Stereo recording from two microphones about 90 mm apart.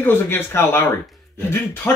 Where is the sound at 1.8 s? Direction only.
25° left (ahead or behind).